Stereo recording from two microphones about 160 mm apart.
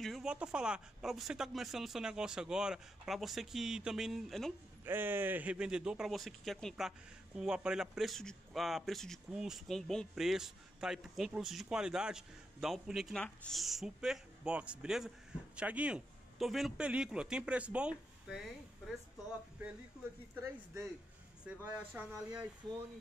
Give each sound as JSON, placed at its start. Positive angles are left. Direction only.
{"t": 0.0, "sound": "speech", "side_deg": 0}
{"t": 4.8, "sound": "speech", "side_deg": -10}
{"t": 20.3, "sound": "speech", "side_deg": -20}